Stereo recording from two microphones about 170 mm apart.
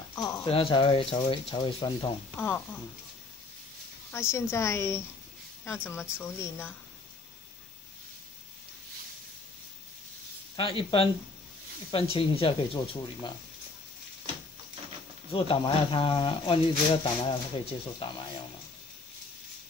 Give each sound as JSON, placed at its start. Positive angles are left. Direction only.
{"t": 0.1, "sound": "clip-clop", "side_deg": 20}
{"t": 0.5, "sound": "speech", "side_deg": 30}
{"t": 2.3, "sound": "a woman's voice", "side_deg": 10}
{"t": 4.1, "sound": "a woman's voice", "side_deg": 15}
{"t": 6.2, "sound": "a woman's voice", "side_deg": 15}
{"t": 10.5, "sound": "speech", "side_deg": 30}
{"t": 15.3, "sound": "speech", "side_deg": 30}